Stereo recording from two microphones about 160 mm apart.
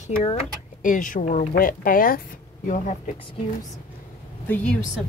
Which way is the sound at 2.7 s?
50° left (ahead or behind).